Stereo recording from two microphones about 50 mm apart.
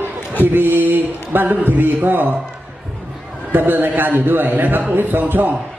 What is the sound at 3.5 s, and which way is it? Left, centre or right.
A man's voice, right.